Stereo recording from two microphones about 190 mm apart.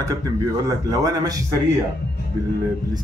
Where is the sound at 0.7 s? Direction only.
20° right (ahead or behind).